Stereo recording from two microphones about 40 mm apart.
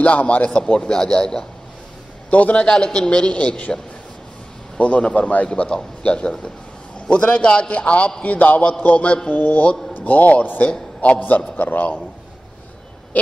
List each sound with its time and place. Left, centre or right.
0.0 s a man's voice: left
0.6 s a man's voice: left
2.3 s a man's voice: left
5.5 s a man's voice: left
9.3 s a man's voice: left
10.6 s a man's voice: left
11.1 s a man's voice: left
13.1 s owl: left